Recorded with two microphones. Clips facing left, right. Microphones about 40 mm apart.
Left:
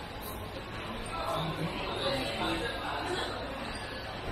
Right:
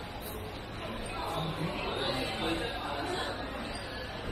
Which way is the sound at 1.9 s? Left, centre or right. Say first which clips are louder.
Left 3 dB; centre.